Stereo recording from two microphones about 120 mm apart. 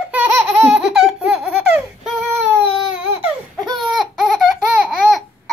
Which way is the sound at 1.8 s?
Centre (ahead or behind).